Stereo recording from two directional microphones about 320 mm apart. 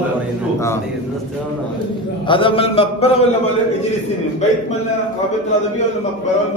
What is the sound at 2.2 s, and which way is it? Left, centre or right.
Speech, centre.